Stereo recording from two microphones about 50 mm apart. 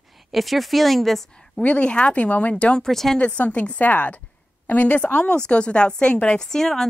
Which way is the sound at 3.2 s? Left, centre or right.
Left.